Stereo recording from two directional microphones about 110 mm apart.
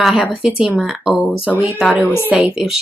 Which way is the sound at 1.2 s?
15° left (ahead or behind).